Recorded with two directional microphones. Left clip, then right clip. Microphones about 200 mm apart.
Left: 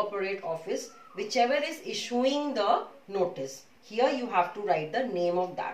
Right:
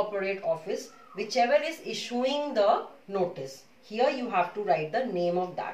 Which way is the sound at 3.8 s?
15° right (ahead or behind).